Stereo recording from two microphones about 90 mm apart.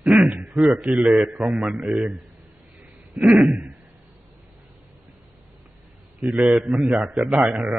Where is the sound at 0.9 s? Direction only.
10° right (ahead or behind).